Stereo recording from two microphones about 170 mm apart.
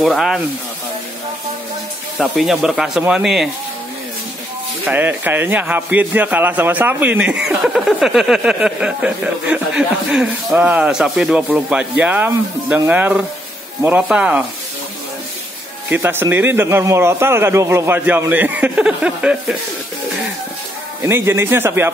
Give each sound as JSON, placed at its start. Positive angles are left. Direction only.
{"t": 0.0, "sound": "speech", "side_deg": 0}
{"t": 2.1, "sound": "speech", "side_deg": 0}
{"t": 4.8, "sound": "speech", "side_deg": -10}
{"t": 15.9, "sound": "speech", "side_deg": -10}
{"t": 21.0, "sound": "speech", "side_deg": -15}